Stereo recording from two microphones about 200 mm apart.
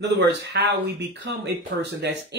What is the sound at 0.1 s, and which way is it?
Speech, 55° right (ahead or behind).